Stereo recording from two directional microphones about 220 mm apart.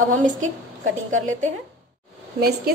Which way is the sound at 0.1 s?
35° right (ahead or behind).